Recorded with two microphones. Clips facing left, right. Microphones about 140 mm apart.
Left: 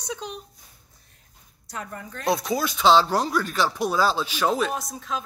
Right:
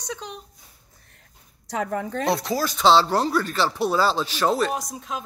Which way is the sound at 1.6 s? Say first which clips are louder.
Right 9 dB; 90° right.